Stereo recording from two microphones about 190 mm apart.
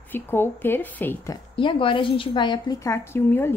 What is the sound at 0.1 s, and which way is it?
Speech, 10° left (ahead or behind).